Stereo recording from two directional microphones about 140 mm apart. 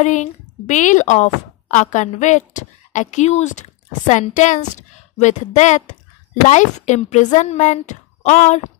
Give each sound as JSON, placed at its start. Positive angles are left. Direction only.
{"t": 0.0, "sound": "a woman's voice", "side_deg": 60}